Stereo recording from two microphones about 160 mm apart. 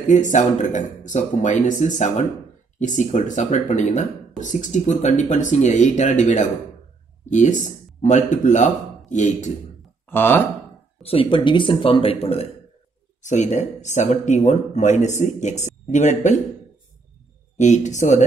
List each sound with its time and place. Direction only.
0.1 s speech: 50° left (ahead or behind)
10.0 s speech: 10° left (ahead or behind)
11.0 s speech: 35° left (ahead or behind)
13.2 s speech: 50° left (ahead or behind)
17.6 s speech: 50° left (ahead or behind)